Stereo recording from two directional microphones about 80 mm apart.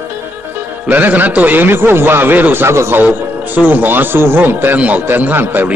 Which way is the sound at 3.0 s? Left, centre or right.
Right.